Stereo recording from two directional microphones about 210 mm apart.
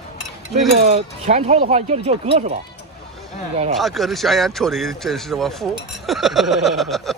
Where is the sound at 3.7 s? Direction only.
Centre (ahead or behind).